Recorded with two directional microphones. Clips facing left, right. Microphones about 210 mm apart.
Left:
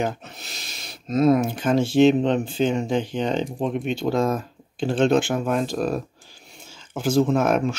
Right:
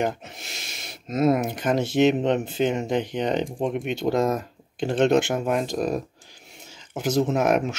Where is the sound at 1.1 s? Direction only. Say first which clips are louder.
Left 3 dB; 50° right (ahead or behind).